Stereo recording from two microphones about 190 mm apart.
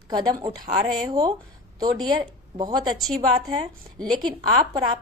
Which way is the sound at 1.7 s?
20° right (ahead or behind).